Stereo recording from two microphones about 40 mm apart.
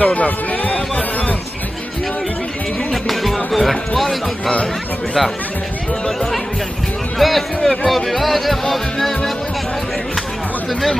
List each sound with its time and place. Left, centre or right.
0.0 s speech: left
2.9 s speech: centre
7.2 s speech: centre